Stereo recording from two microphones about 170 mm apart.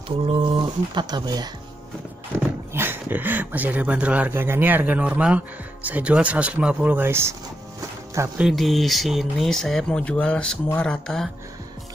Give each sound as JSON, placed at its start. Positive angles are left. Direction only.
{"t": 0.3, "sound": "speech", "side_deg": -25}
{"t": 2.7, "sound": "speech", "side_deg": -10}
{"t": 8.4, "sound": "speech", "side_deg": 0}